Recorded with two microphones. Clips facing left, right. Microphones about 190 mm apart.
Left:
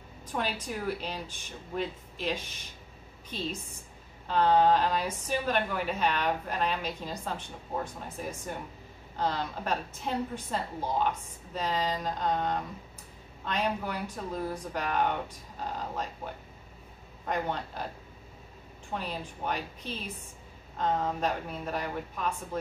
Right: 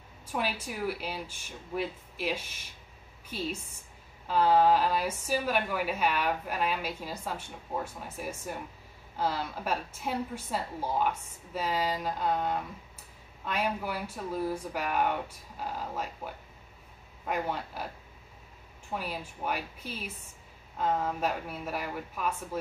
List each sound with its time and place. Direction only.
0.3 s a woman's voice: 10° right (ahead or behind)
17.3 s a woman's voice: 5° right (ahead or behind)
18.9 s a woman's voice: 10° right (ahead or behind)